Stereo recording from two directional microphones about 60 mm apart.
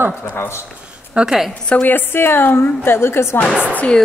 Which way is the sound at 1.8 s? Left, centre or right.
Left.